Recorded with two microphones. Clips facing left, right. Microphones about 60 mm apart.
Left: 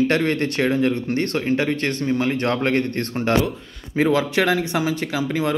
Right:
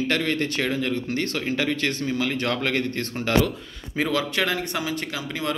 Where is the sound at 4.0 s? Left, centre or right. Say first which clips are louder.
Left 5 dB; left.